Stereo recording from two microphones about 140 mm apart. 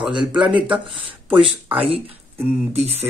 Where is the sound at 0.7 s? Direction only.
40° right (ahead or behind).